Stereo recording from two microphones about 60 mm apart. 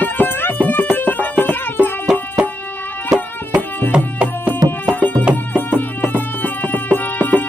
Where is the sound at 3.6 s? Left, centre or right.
Left.